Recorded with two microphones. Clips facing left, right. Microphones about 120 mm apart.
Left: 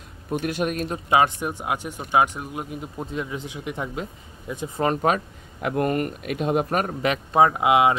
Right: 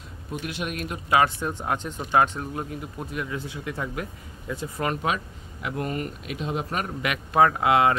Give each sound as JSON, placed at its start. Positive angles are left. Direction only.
{"t": 0.3, "sound": "speech", "side_deg": 45}
{"t": 1.1, "sound": "speech", "side_deg": 15}
{"t": 4.8, "sound": "speech", "side_deg": 45}
{"t": 7.3, "sound": "speech", "side_deg": 20}